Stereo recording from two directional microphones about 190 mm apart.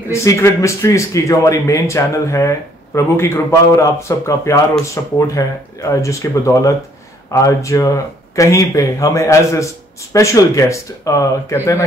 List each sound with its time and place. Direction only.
0.1 s speech: 15° left (ahead or behind)